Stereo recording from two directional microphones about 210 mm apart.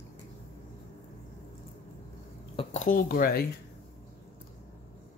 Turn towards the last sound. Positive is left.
turn(degrees=45)  # may be behind; listen again after turning